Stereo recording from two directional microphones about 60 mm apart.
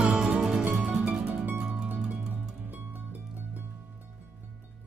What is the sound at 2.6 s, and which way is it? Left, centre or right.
Music, right.